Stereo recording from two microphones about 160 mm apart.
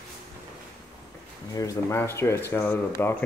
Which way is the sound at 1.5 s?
20° left (ahead or behind).